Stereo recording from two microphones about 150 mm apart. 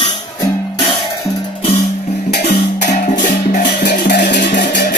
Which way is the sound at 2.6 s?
55° left (ahead or behind).